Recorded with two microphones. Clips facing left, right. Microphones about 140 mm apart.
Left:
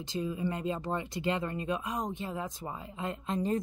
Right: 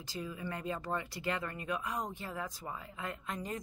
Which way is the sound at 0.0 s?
20° left (ahead or behind).